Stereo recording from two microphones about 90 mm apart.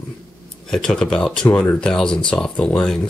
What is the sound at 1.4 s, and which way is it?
Speech, 20° left (ahead or behind).